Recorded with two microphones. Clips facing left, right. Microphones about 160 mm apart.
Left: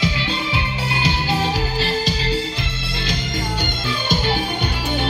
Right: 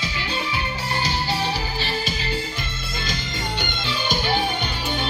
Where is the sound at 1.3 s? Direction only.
40° left (ahead or behind).